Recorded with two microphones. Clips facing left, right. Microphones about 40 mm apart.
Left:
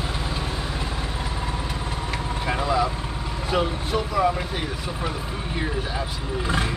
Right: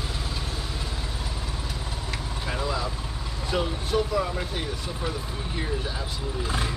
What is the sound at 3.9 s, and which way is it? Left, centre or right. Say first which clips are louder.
Vehicle: even; centre.